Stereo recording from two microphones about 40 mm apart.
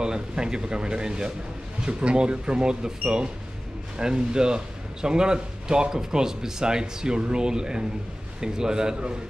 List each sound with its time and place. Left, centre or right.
0.0 s a man's voice: centre